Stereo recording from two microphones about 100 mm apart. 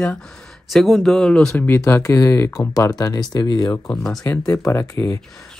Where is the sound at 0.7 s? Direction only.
Centre (ahead or behind).